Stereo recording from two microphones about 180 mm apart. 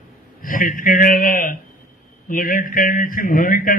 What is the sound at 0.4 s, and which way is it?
A man's voice, 50° left (ahead or behind).